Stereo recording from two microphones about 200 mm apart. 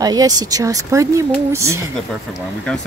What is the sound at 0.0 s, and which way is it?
Speech, 20° right (ahead or behind).